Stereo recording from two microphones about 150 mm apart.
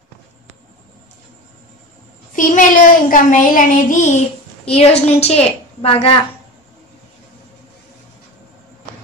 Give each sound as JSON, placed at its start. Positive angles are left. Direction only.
{"t": 2.3, "sound": "child singing", "side_deg": 60}
{"t": 4.6, "sound": "a woman's voice", "side_deg": 45}